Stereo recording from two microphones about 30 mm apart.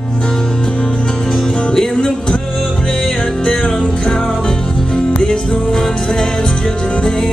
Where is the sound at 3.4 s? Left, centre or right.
Left.